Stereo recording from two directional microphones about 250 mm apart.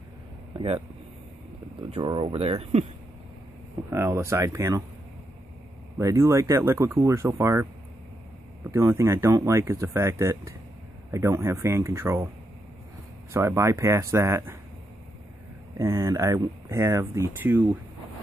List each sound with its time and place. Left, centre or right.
1.8 s speech: right
3.9 s speech: centre
5.9 s speech: centre
8.6 s speech: centre
13.3 s speech: centre
15.8 s speech: centre